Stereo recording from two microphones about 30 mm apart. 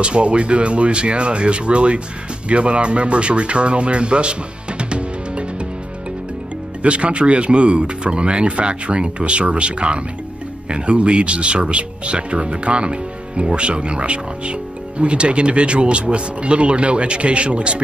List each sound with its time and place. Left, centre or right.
0.0 s speech: right
6.8 s speech: right